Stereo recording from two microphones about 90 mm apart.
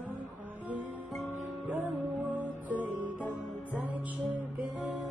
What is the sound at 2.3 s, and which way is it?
Music, 20° right (ahead or behind).